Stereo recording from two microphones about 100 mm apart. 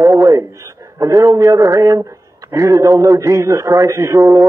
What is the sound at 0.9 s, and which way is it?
A man's voice, 35° right (ahead or behind).